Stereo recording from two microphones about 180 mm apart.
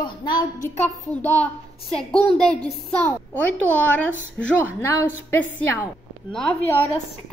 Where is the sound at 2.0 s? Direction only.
5° left (ahead or behind).